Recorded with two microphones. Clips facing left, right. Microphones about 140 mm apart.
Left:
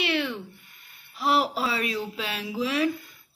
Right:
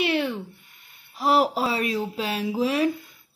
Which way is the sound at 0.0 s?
40° right (ahead or behind).